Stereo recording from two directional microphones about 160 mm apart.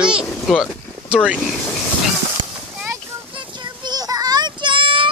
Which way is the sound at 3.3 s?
30° right (ahead or behind).